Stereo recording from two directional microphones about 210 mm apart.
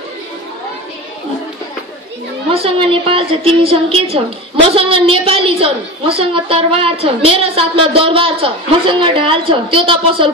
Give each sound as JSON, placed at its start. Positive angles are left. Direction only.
{"t": 2.5, "sound": "a woman's voice", "side_deg": -25}